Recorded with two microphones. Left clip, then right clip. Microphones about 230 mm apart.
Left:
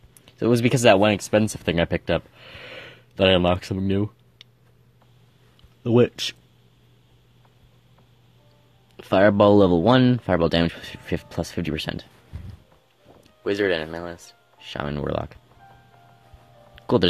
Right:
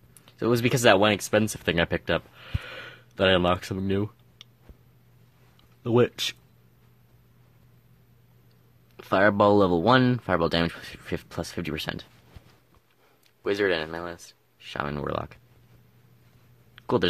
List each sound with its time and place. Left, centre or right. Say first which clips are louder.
0.2 s speech: left 4 dB; centre
5.9 s a man's voice: left 3 dB; centre
8.9 s a man's voice: left 4 dB; centre
13.4 s speech: left 2 dB; centre
16.7 s music: left 4 dB; centre